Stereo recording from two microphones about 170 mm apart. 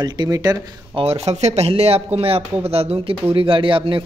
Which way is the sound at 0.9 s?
35° right (ahead or behind).